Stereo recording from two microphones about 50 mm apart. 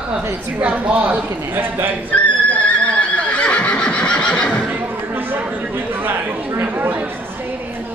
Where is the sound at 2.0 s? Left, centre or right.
Left.